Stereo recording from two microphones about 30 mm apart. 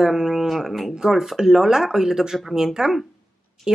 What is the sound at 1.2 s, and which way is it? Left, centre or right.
Speech, centre.